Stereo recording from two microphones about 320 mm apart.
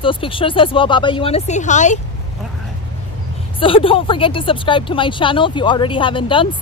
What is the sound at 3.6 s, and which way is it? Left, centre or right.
Speech, centre.